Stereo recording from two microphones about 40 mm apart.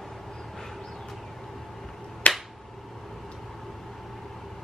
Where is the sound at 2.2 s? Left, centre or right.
Left.